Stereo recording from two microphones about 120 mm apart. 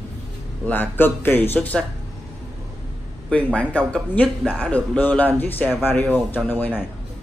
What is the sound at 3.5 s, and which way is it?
Speech, 10° left (ahead or behind).